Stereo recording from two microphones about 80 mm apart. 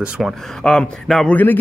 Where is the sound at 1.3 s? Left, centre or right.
Left.